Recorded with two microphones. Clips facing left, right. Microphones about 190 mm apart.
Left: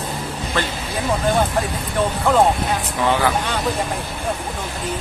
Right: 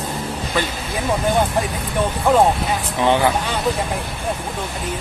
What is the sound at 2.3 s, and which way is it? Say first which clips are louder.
Speech: right 2 dB; 15° right (ahead or behind).